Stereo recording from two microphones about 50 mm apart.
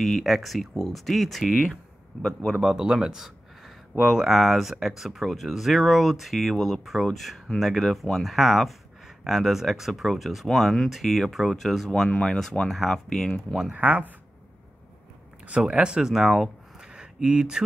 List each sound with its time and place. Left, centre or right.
0.0 s speech: centre
2.6 s speech: centre
11.9 s speech: centre
13.7 s speech: right
15.6 s speech: centre
16.9 s a sound: centre